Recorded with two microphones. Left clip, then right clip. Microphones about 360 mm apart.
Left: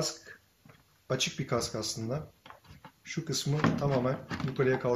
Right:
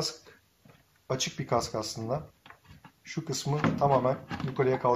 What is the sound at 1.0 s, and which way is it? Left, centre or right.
Speech, centre.